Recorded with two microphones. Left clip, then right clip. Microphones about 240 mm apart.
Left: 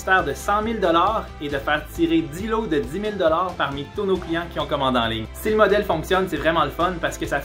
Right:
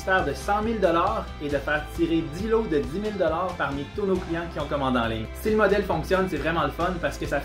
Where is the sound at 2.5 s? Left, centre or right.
Centre.